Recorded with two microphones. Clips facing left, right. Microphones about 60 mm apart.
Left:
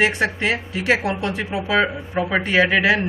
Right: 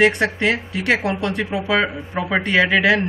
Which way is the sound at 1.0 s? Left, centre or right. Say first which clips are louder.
Right 1 dB; right.